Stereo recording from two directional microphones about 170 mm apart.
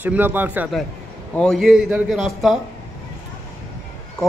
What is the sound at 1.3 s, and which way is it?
A man's voice, 5° left (ahead or behind).